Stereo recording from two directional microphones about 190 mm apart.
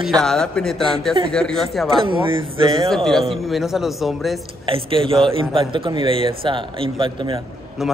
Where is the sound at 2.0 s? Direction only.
25° right (ahead or behind).